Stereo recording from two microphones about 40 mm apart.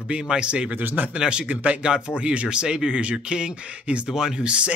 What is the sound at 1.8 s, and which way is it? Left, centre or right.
Speech, right.